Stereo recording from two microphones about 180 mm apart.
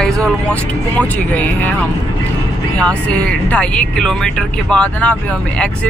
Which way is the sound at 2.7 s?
5° left (ahead or behind).